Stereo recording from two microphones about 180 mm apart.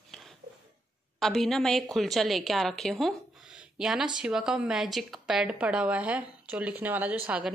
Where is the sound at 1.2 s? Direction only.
Centre (ahead or behind).